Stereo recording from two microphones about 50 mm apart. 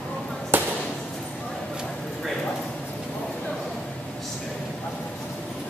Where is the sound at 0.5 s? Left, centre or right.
Right.